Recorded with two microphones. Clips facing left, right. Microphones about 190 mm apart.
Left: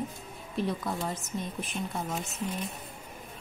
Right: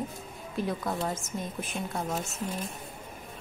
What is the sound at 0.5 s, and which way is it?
Speech, centre (ahead or behind).